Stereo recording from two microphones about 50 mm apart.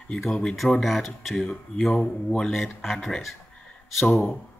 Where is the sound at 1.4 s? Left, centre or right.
Centre.